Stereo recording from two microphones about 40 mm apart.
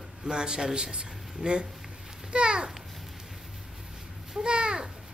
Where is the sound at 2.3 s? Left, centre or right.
Right.